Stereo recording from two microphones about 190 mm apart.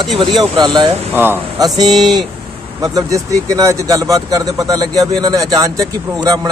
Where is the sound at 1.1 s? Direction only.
10° right (ahead or behind).